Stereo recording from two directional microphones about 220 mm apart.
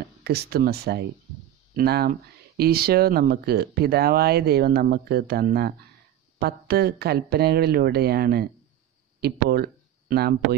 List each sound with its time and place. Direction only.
0.2 s speech: 45° right (ahead or behind)